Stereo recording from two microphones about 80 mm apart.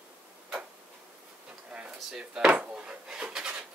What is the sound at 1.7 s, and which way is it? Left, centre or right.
Wood, centre.